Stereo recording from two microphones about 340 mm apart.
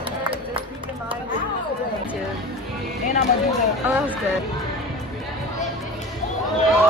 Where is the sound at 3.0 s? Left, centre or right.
Left.